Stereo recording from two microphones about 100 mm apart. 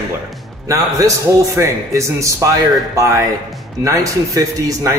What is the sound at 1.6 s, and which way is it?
A man's voice, 30° right (ahead or behind).